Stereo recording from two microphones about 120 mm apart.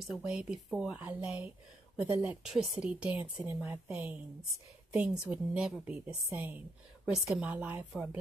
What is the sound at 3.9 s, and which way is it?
A woman's voice, 10° right (ahead or behind).